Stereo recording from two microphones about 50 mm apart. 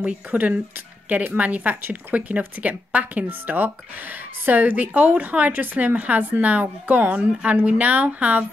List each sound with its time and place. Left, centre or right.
0.3 s speech: right
1.8 s speech: right
2.1 s speech: right